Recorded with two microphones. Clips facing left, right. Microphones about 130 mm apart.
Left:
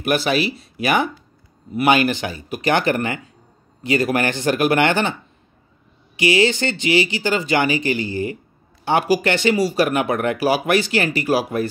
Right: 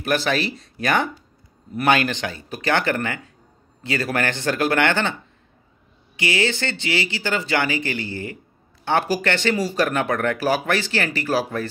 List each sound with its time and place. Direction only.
0.0 s speech: 15° left (ahead or behind)
6.1 s speech: 15° left (ahead or behind)